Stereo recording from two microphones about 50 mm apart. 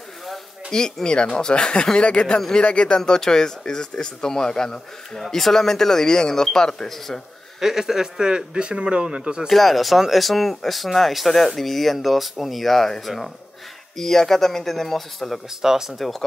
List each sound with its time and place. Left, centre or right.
0.7 s speech: centre
3.0 s speech: centre
7.6 s speech: centre
9.5 s speech: centre
15.6 s speech: centre